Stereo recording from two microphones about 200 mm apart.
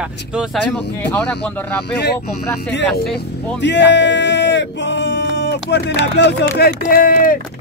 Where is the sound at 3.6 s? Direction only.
60° left (ahead or behind).